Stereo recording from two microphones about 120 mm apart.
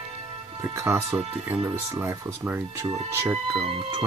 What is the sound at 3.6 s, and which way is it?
Speech, 50° right (ahead or behind).